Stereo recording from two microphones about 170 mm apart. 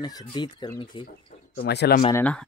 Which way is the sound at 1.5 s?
75° left (ahead or behind).